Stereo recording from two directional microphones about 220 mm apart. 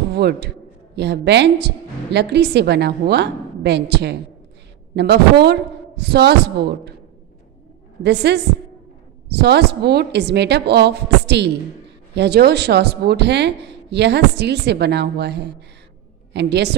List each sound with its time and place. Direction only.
0.1 s a man's voice: 50° right (ahead or behind)
8.0 s speech: 50° right (ahead or behind)